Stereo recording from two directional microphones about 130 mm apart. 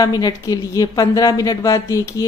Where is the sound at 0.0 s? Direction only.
30° left (ahead or behind).